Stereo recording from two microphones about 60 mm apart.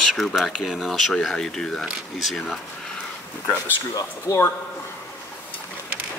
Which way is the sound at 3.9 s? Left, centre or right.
Left.